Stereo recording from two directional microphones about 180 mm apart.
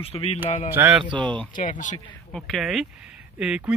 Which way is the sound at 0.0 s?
35° left (ahead or behind).